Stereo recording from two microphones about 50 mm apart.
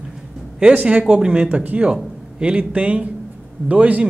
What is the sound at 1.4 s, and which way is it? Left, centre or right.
Speech, right.